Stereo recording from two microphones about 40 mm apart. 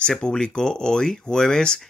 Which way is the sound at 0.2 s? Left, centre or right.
Centre.